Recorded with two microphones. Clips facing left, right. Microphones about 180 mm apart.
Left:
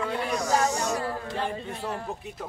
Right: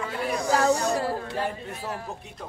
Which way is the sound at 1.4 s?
5° right (ahead or behind).